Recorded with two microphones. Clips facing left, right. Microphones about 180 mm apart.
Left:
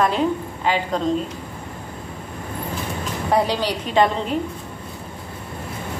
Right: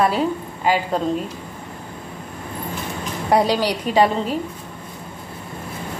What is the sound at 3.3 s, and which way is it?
Speech, 10° right (ahead or behind).